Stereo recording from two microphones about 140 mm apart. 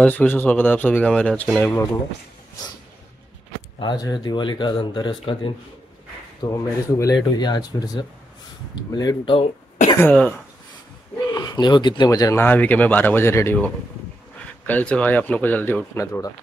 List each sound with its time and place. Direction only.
0.0 s speech: 10° left (ahead or behind)
3.8 s speech: 30° left (ahead or behind)
6.4 s speech: 25° left (ahead or behind)
11.3 s speech: 30° left (ahead or behind)
14.7 s speech: 10° left (ahead or behind)